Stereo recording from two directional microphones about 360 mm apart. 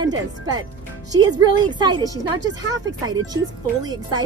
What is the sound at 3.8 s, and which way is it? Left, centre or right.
Speech, centre.